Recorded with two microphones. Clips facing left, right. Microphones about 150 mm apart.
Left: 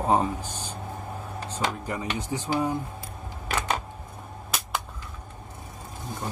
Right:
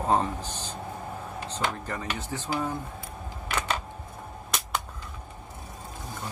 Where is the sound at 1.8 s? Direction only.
10° left (ahead or behind).